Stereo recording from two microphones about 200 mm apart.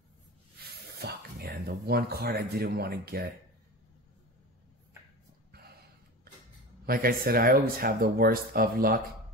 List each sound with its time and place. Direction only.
0.8 s speech: 50° right (ahead or behind)
6.9 s speech: 45° right (ahead or behind)